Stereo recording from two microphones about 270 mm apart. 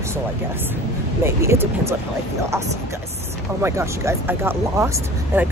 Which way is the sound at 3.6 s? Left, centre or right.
Centre.